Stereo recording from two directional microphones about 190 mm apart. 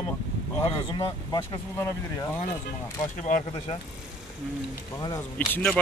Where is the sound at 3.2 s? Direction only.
40° left (ahead or behind).